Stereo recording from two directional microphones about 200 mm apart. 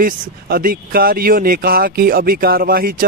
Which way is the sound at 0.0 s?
45° right (ahead or behind).